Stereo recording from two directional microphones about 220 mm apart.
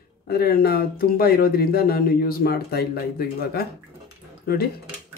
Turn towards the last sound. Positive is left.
turn(degrees=45)  # may be behind; listen again after turning